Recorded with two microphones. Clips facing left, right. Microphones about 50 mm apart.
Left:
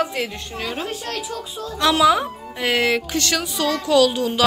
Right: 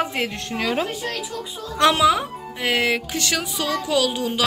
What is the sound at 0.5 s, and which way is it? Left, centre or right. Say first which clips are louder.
Speech: right 5 dB; right.